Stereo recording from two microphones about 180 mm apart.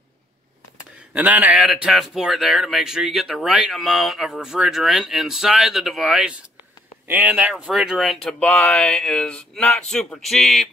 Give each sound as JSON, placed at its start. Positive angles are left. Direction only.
{"t": 1.1, "sound": "speech", "side_deg": -10}